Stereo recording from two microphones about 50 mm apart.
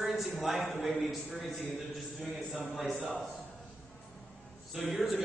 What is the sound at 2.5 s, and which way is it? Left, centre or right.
Speech, left.